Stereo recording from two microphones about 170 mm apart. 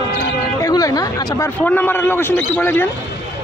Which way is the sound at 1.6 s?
10° left (ahead or behind).